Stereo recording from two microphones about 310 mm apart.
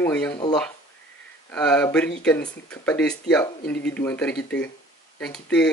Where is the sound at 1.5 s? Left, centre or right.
Centre.